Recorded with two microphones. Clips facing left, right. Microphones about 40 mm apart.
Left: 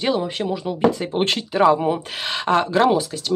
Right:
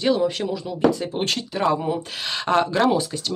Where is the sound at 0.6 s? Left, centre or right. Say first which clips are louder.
Left 1 dB; left.